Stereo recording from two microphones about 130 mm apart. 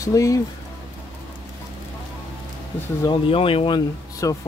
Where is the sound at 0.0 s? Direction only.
25° left (ahead or behind).